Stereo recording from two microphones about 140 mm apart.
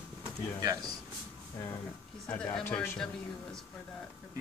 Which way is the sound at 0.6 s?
25° right (ahead or behind).